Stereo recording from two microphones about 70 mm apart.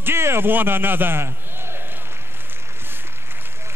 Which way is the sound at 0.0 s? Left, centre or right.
Right.